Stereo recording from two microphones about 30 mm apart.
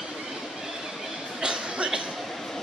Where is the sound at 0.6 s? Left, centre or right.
Centre.